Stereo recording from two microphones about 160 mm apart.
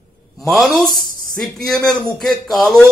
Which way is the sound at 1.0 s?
65° right (ahead or behind).